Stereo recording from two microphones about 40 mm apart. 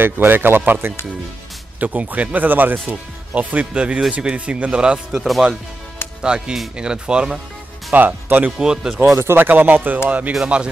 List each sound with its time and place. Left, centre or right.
0.0 s speech: right
1.8 s speech: right
2.9 s a man's voice: right
6.2 s a man's voice: right
7.9 s speech: right
8.5 s speech: centre
9.1 s speech: right
9.4 s speech: right
10.0 s speech: right
10.4 s a man's voice: right